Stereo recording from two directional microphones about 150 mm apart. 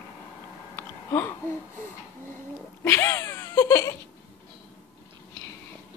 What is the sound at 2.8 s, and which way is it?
Speech, 20° left (ahead or behind).